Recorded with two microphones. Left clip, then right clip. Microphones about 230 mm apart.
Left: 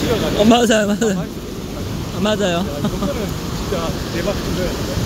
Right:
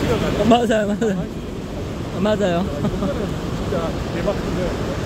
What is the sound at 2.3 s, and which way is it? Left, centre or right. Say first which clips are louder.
Speech: left 1 dB; centre.